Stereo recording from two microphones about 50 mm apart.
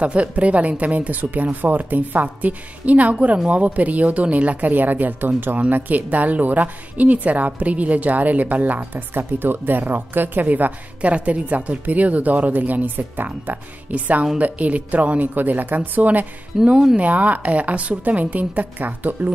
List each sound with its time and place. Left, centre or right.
0.0 s a woman's voice: right
16.6 s speech: centre
17.0 s a woman's voice: right